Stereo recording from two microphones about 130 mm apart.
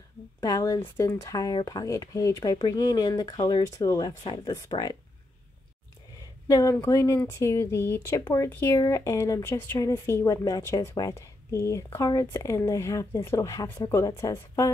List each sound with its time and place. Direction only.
0.4 s a woman's voice: 25° left (ahead or behind)
6.4 s a woman's voice: 25° left (ahead or behind)